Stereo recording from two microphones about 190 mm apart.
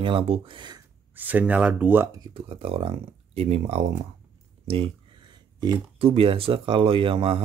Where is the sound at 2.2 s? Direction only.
30° right (ahead or behind).